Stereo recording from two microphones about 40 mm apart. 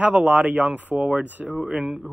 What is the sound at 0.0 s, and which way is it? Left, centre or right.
Speech, right.